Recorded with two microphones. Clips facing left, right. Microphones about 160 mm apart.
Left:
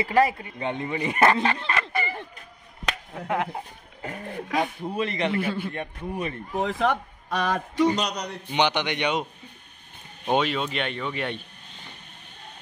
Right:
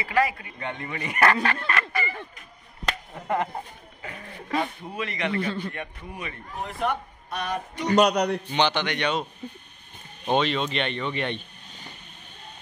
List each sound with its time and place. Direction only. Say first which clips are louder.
0.0 s speech: left 3 dB; 30° left (ahead or behind)
2.8 s finger snapping: even; centre (ahead or behind)
4.5 s speech: left 1 dB; centre (ahead or behind)
4.9 s speech: left 3 dB; 30° left (ahead or behind)
5.4 s a man's voice: left 1 dB; 5° left (ahead or behind)
5.7 s a man's voice: left 4 dB; 35° left (ahead or behind)
6.6 s speech: left 4 dB; 90° left
7.9 s a man's voice: right 8 dB; 60° right (ahead or behind)
8.5 s a man's voice: even; 15° left (ahead or behind)
10.2 s speech: even; 10° left (ahead or behind)